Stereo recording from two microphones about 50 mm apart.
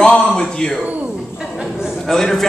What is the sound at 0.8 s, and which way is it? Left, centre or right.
Speech, right.